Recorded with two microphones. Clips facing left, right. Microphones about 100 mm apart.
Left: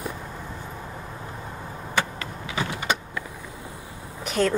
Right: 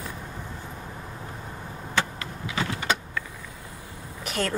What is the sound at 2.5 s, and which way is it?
Vehicle, 15° left (ahead or behind).